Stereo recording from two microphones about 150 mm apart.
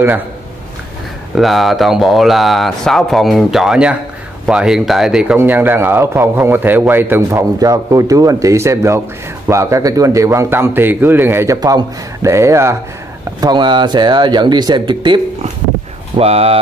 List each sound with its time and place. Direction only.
1.3 s speech: centre (ahead or behind)
5.4 s a man's voice: 15° right (ahead or behind); by 15.1 s 30° right (ahead or behind)
16.2 s speech: 40° right (ahead or behind)